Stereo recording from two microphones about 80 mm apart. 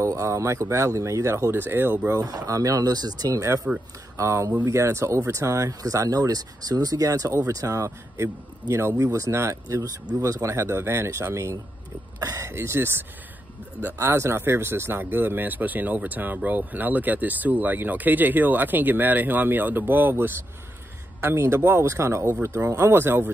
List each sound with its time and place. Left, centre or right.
0.0 s speech: right
1.5 s speech: right
2.2 s speech: right